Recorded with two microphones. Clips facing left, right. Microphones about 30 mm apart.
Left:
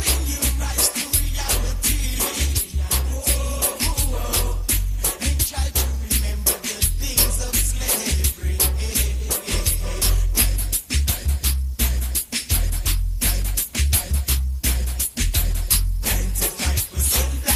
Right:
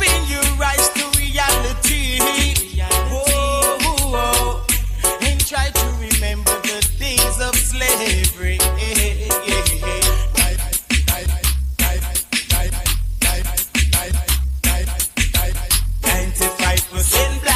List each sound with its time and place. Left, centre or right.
0.0 s music: right